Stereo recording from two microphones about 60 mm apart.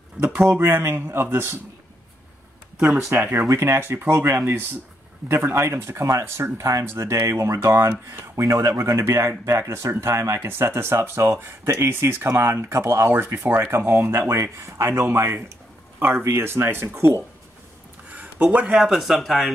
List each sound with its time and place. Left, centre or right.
0.5 s speech: right
3.3 s speech: right
9.0 s speech: right
14.3 s speech: right
18.1 s a sound: right
18.8 s speech: centre